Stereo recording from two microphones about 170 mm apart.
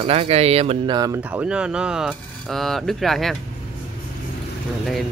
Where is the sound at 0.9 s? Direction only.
20° right (ahead or behind).